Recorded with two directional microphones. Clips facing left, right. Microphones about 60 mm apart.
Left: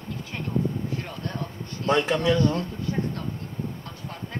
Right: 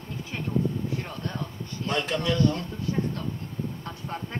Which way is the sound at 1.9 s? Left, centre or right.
Left.